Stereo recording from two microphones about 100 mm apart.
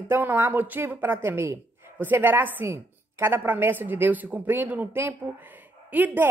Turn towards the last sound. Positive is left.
turn(degrees=-15)  # may be behind; listen again after turning